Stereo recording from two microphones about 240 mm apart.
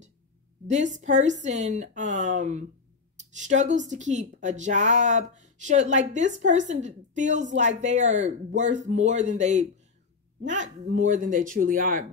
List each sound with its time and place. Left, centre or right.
0.7 s a woman's voice: right